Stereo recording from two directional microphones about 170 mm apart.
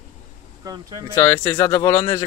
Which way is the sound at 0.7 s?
20° right (ahead or behind).